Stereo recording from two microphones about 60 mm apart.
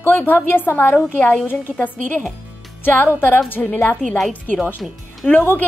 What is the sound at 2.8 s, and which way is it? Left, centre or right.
Speech, left.